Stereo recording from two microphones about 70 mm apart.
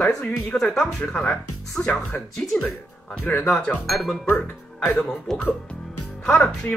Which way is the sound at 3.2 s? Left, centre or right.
Left.